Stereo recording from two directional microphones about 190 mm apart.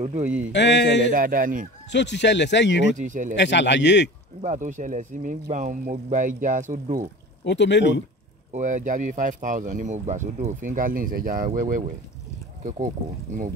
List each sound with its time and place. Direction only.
0.0 s speech: 35° right (ahead or behind)
0.5 s speech: 65° left (ahead or behind)
1.1 s speech: 45° right (ahead or behind)
1.9 s speech: 65° left (ahead or behind)
3.0 s speech: 40° right (ahead or behind)
3.3 s speech: 65° left (ahead or behind)
4.4 s speech: 40° right (ahead or behind)
7.4 s speech: 65° left (ahead or behind)
8.5 s speech: 40° right (ahead or behind)